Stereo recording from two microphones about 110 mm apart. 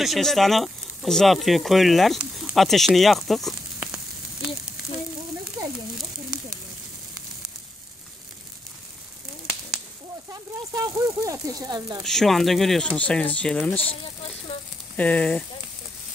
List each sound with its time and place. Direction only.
0.0 s speech: centre (ahead or behind)
3.8 s frying: 10° right (ahead or behind)
10.7 s a sound: 35° right (ahead or behind)
12.0 s speech: 5° left (ahead or behind)
15.0 s speech: 15° left (ahead or behind)